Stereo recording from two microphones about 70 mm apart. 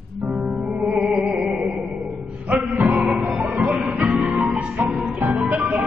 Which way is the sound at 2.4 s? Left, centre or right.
Centre.